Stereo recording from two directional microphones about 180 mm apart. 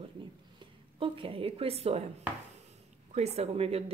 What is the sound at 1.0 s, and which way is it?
A woman's voice, 30° right (ahead or behind).